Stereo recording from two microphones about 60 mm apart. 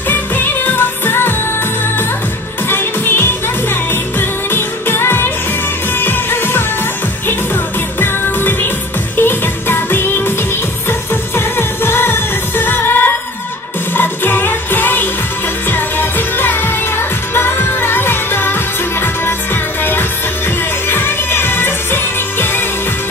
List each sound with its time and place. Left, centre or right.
0.1 s music: left
2.7 s music: left
8.0 s music: left